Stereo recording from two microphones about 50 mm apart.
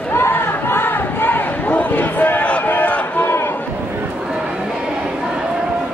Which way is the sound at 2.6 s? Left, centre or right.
Left.